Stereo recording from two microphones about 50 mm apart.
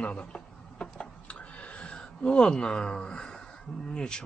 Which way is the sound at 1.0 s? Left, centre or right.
Left.